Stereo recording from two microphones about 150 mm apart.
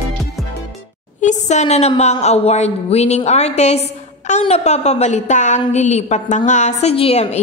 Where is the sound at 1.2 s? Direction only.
50° left (ahead or behind).